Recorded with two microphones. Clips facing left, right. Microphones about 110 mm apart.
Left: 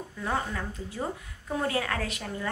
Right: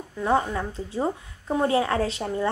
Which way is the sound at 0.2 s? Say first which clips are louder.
Right 8 dB; 25° right (ahead or behind).